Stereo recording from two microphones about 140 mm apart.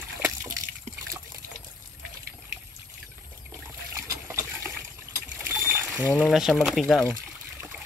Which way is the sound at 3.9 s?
20° right (ahead or behind).